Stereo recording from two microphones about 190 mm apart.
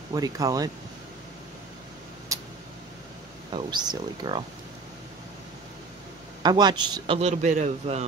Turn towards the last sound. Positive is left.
turn(degrees=-35)  # may be behind; listen again after turning